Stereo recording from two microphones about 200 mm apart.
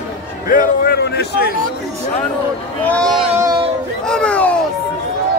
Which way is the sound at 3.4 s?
20° right (ahead or behind).